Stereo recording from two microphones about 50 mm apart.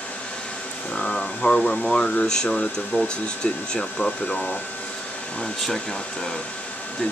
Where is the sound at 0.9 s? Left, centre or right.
Centre.